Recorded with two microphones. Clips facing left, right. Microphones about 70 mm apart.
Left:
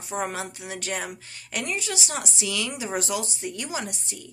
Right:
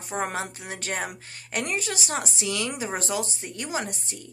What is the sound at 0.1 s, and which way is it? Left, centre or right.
A woman's voice, right.